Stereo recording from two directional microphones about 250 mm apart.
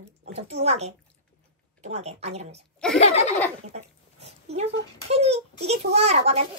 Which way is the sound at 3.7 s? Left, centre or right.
Right.